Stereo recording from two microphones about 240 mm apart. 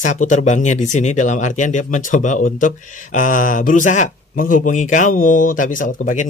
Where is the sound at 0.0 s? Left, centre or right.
Left.